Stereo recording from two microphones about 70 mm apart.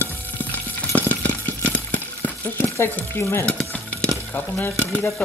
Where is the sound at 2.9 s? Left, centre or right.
Left.